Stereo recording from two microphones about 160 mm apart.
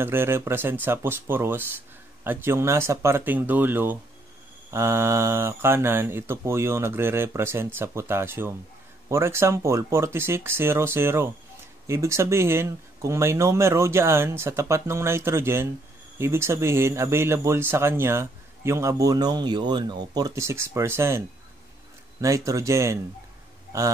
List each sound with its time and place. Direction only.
0.0 s speech: 15° right (ahead or behind)
22.2 s speech: 20° right (ahead or behind)